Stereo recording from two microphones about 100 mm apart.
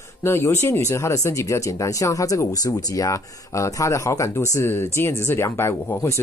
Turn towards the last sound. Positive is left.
turn(degrees=30)  # may be behind; listen again after turning